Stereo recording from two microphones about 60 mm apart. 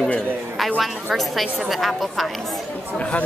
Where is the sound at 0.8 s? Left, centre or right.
Centre.